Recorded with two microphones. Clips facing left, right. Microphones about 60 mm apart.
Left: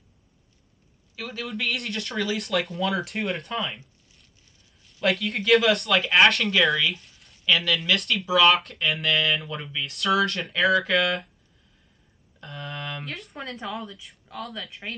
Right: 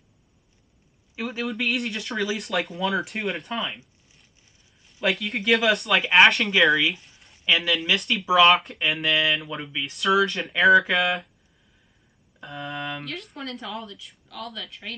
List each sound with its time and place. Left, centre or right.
1.1 s a man's voice: right
1.4 s speech: centre
5.0 s speech: centre
6.8 s speech: centre
7.2 s a sound: centre
8.0 s speech: centre
12.4 s speech: centre
13.6 s speech: centre
14.3 s speech: centre